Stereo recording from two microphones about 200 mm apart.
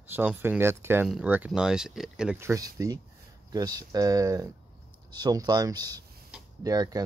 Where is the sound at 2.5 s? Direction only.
15° right (ahead or behind).